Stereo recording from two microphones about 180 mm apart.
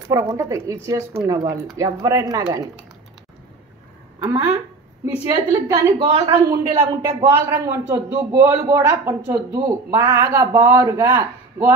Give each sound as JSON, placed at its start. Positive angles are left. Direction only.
{"t": 0.1, "sound": "a man's voice", "side_deg": -15}
{"t": 5.0, "sound": "a man's voice", "side_deg": -15}